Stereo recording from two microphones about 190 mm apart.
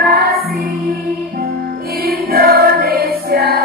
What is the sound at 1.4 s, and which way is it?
Music, 55° right (ahead or behind).